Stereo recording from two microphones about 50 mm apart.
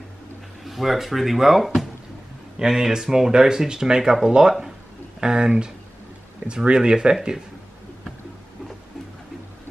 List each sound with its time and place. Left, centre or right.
0.7 s speech: centre